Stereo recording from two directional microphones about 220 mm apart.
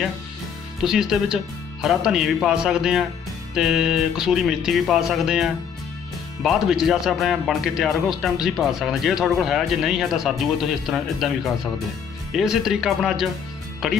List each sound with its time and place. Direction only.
0.8 s speech: centre (ahead or behind)